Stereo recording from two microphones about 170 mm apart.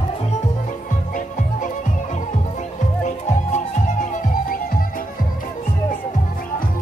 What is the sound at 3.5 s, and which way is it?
Music, 45° left (ahead or behind).